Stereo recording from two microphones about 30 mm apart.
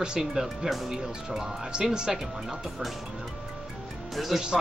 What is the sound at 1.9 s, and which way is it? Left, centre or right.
Speech, right.